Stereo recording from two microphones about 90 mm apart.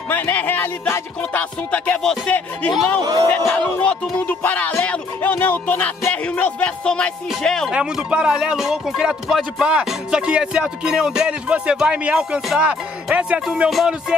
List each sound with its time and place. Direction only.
0.1 s speech: 20° left (ahead or behind)
1.4 s music: 15° left (ahead or behind)
7.7 s speech: 10° right (ahead or behind)
13.7 s music: 5° right (ahead or behind)